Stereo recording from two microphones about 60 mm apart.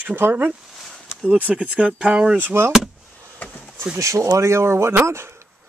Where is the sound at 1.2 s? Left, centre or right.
Right.